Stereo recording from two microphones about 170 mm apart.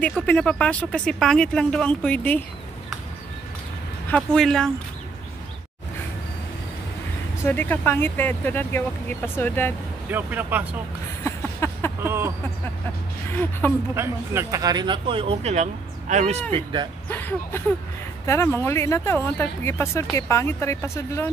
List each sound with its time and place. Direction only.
0.3 s speech: 5° left (ahead or behind)
4.1 s speech: 5° left (ahead or behind)
7.4 s speech: 10° left (ahead or behind)
10.0 s speech: 10° right (ahead or behind)
11.2 s a sound: 15° left (ahead or behind)
12.0 s a sound: 15° right (ahead or behind)
13.3 s speech: 10° left (ahead or behind)
13.9 s speech: 15° right (ahead or behind); by 16.4 s 45° right (ahead or behind)
17.1 s speech: 10° left (ahead or behind)